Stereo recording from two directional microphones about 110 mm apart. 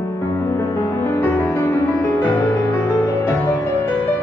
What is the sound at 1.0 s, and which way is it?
Music, 25° left (ahead or behind).